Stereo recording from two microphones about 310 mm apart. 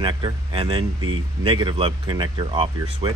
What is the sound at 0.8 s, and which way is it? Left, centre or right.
Speech, right.